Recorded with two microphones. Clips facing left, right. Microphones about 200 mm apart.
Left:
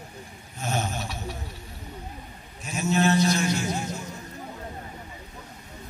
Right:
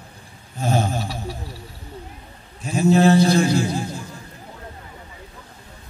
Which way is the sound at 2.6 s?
30° right (ahead or behind).